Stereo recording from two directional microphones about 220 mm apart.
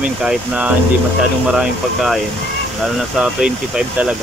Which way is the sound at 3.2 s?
5° right (ahead or behind).